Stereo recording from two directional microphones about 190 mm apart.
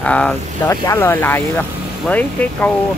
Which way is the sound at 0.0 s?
5° left (ahead or behind).